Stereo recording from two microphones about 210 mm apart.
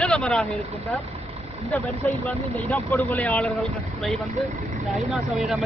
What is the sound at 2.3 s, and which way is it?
Speech, 10° left (ahead or behind).